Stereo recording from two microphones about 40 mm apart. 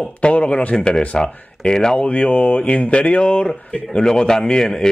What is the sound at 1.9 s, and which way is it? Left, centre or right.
A man's voice, left.